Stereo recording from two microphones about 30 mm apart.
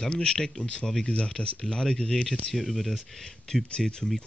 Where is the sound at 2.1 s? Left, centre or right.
Centre.